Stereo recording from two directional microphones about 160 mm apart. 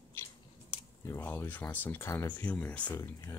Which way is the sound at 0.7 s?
20° left (ahead or behind).